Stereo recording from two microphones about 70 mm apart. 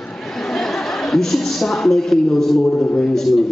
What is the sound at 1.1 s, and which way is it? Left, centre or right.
A man's voice, centre.